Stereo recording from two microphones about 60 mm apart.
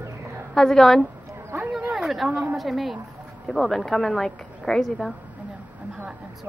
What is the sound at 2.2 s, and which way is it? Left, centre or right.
Speech, centre.